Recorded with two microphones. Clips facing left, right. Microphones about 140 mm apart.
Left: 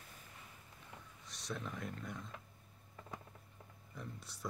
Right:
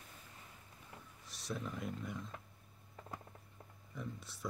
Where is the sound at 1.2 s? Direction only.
Centre (ahead or behind).